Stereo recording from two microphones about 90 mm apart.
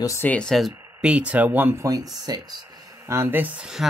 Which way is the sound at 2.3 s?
50° right (ahead or behind).